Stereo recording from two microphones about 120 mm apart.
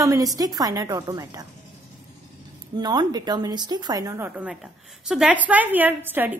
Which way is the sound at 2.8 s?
35° right (ahead or behind).